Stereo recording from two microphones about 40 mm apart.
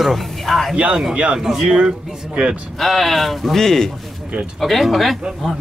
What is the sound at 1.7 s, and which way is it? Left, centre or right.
Speech, right.